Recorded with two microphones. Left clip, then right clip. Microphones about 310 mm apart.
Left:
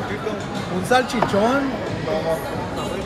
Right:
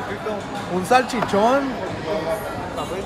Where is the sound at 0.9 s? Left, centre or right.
Right.